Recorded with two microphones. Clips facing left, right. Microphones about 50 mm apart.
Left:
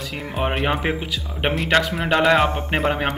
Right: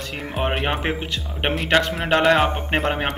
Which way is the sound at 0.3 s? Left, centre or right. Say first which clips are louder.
Left 1 dB; centre.